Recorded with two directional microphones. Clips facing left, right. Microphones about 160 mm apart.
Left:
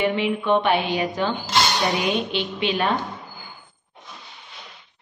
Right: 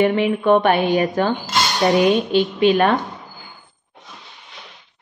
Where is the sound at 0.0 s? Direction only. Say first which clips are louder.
Right 6 dB; 50° right (ahead or behind).